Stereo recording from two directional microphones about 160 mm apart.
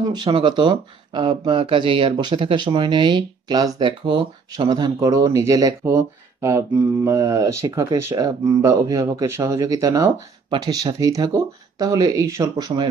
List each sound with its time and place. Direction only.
0.1 s speech: 30° right (ahead or behind)